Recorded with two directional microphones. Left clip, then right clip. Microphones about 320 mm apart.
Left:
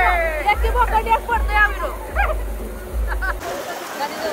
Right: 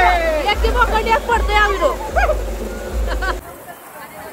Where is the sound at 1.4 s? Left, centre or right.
Centre.